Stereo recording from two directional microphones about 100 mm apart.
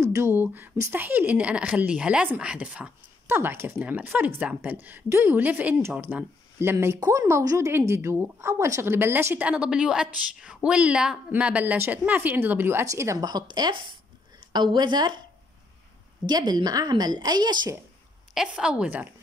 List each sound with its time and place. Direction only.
0.0 s a woman's voice: 30° right (ahead or behind); by 2.9 s 10° right (ahead or behind)
3.3 s a woman's voice: 25° right (ahead or behind)
13.3 s a woman's voice: 45° right (ahead or behind)
16.3 s a woman's voice: 45° right (ahead or behind)
18.3 s a woman's voice: 5° right (ahead or behind)